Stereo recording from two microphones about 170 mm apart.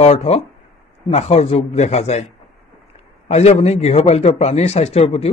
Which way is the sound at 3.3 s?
40° left (ahead or behind).